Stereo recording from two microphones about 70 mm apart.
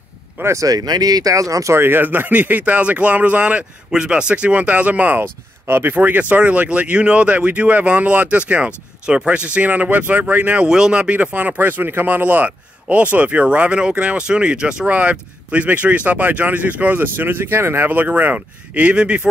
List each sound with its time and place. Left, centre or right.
0.4 s speech: right
0.7 s speech: right
1.8 s speech: right
10.7 s speech: centre